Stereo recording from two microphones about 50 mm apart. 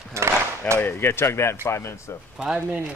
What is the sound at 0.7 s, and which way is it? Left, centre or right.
Speech, left.